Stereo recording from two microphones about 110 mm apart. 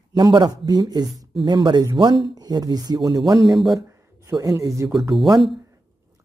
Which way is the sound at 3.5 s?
Centre (ahead or behind).